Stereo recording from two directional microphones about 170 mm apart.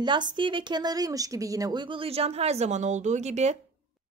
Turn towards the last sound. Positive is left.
turn(degrees=-40)  # may be behind; listen again after turning